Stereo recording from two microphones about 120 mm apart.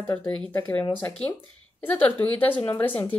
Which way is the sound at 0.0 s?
20° left (ahead or behind).